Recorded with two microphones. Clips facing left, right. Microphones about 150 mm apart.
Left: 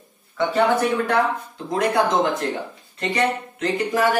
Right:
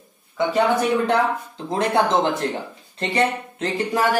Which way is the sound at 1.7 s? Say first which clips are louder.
Even; 25° right (ahead or behind).